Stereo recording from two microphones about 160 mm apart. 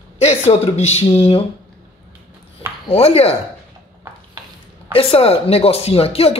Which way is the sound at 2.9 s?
40° left (ahead or behind).